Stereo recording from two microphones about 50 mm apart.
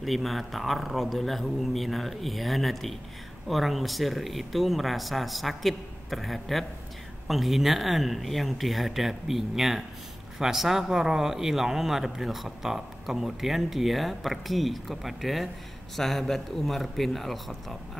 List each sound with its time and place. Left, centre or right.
0.0 s speech: centre